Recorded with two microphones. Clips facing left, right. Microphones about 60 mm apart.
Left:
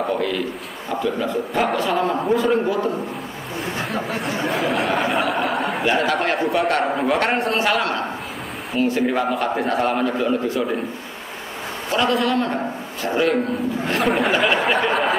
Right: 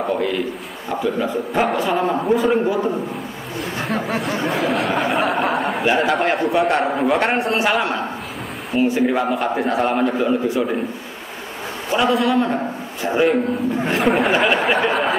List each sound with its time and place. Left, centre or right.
0.0 s a sound: centre
0.8 s a man's voice: centre
4.4 s a man's voice: centre
5.3 s chuckle: centre
5.9 s a man's voice: centre
9.0 s a man's voice: centre
11.9 s a man's voice: centre
13.9 s a man's voice: centre